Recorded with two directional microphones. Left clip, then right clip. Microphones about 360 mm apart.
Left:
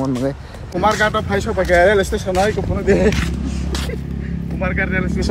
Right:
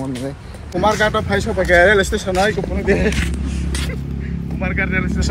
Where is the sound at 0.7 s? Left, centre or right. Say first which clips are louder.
Even; centre.